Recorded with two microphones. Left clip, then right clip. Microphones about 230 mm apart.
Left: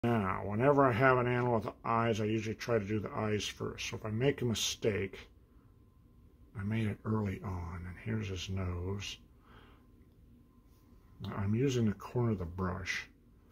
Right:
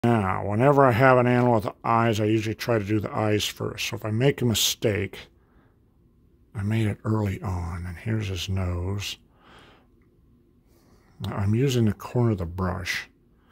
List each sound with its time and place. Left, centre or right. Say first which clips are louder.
0.0 s speech: right 9 dB; right
6.5 s speech: right 9 dB; right
11.1 s speech: right 9 dB; right